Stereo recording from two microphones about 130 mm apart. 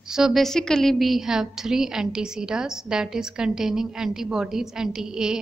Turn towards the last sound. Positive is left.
turn(degrees=-5)  # may be behind; listen again after turning